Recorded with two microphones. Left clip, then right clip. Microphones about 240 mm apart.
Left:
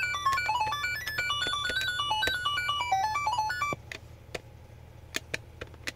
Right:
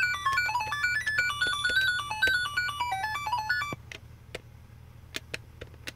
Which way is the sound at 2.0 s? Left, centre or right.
Right.